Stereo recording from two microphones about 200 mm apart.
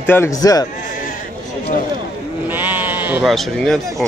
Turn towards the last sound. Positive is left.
turn(degrees=0)  # may be behind; listen again after turning